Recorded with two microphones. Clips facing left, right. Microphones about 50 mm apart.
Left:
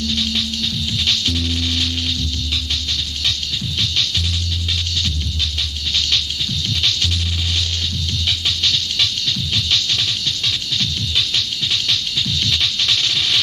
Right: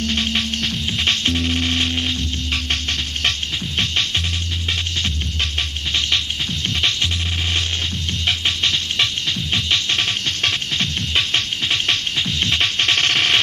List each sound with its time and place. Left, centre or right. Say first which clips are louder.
0.0 s music: right 1 dB; right
6.7 s music: right 1 dB; right
8.3 s music: right 1 dB; right